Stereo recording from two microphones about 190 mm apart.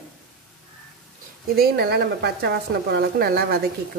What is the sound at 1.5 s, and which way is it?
Speech, 55° right (ahead or behind).